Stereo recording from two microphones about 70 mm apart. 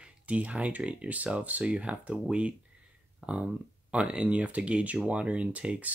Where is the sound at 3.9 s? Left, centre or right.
Centre.